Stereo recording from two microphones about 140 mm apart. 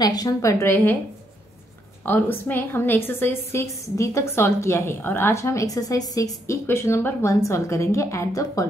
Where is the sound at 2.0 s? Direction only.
15° left (ahead or behind).